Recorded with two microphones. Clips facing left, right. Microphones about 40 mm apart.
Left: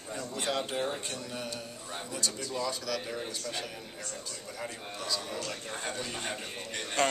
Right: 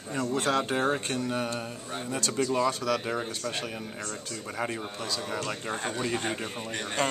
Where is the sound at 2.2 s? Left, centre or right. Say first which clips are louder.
Right 9 dB; right.